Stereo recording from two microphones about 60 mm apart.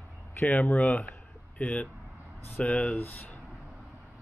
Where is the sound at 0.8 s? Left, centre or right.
Left.